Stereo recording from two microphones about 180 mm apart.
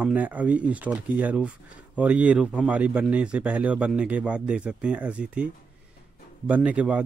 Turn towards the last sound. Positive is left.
turn(degrees=-5)  # may be behind; listen again after turning